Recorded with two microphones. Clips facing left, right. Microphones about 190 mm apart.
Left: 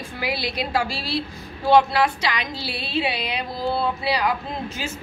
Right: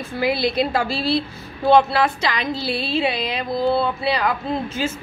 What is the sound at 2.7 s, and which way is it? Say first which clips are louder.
Music: right 8 dB; 30° right (ahead or behind).